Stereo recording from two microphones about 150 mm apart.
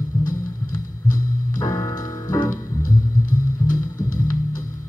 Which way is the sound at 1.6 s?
25° left (ahead or behind).